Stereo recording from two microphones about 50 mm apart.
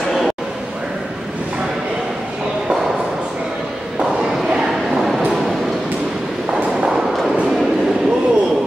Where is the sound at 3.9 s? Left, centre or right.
Centre.